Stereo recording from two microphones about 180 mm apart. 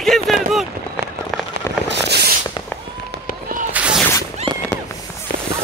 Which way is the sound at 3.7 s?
5° right (ahead or behind).